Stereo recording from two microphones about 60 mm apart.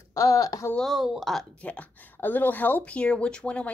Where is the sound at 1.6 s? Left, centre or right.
Left.